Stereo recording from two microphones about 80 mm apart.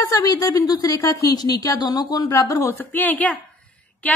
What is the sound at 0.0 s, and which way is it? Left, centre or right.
A woman's voice, left.